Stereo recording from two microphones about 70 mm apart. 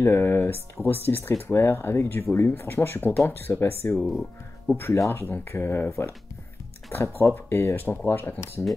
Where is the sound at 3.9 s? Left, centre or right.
Centre.